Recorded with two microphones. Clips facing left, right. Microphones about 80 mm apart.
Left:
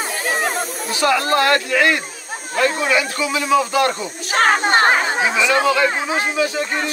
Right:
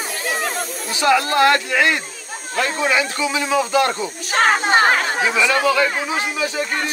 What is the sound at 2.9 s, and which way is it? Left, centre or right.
Speech, right.